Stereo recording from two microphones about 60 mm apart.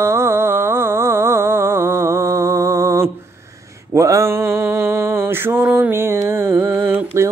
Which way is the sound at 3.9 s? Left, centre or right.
Right.